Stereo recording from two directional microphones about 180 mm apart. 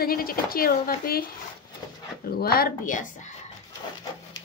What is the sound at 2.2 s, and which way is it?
A woman's voice, 60° left (ahead or behind).